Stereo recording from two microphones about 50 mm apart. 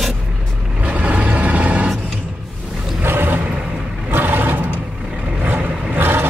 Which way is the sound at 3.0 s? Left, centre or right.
Right.